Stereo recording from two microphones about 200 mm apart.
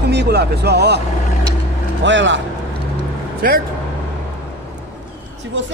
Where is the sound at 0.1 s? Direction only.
55° right (ahead or behind).